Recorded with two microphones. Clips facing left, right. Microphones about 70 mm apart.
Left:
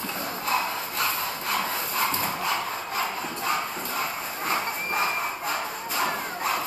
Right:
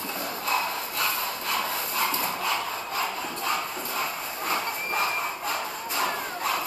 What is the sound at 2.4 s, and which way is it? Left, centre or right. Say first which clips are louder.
Sawing: left 1 dB; left.